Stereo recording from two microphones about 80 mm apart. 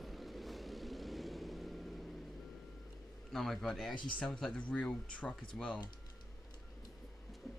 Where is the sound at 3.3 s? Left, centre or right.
Centre.